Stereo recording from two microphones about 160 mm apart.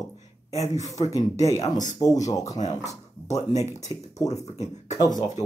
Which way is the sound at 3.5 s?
45° left (ahead or behind).